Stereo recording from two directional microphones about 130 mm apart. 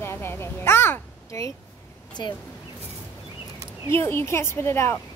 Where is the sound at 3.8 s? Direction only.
20° left (ahead or behind).